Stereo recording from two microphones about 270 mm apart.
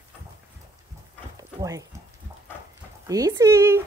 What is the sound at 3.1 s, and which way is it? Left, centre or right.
Speech, centre.